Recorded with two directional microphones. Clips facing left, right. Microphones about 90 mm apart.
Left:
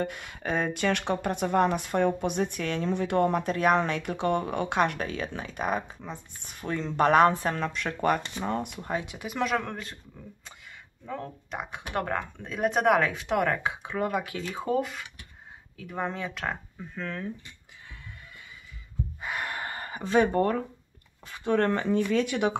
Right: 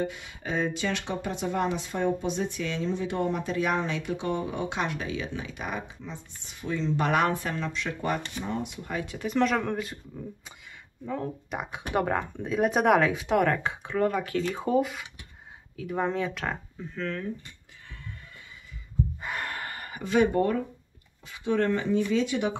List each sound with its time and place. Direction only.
0.0 s speech: 55° left (ahead or behind); by 7.5 s 40° left (ahead or behind)
7.5 s speech: 50° left (ahead or behind)
9.0 s speech: 10° left (ahead or behind); by 9.9 s 5° right (ahead or behind)
11.1 s speech: 5° right (ahead or behind)
14.6 s speech: 5° right (ahead or behind)
16.9 s speech: 15° left (ahead or behind)
19.2 s gasp: 10° left (ahead or behind); by 20.5 s 40° left (ahead or behind)
21.3 s speech: 50° left (ahead or behind)